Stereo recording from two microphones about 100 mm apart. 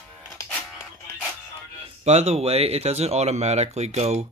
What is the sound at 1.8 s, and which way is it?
Speech, 90° right.